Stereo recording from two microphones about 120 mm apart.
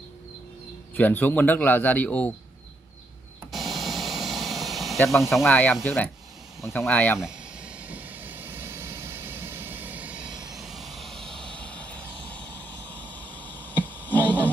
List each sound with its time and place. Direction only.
0.9 s a man's voice: 15° left (ahead or behind)
3.5 s a sound: centre (ahead or behind)
5.1 s speech: centre (ahead or behind)
5.5 s a man's voice: 10° left (ahead or behind)
7.2 s vehicle: 5° right (ahead or behind); by 14.5 s 15° left (ahead or behind)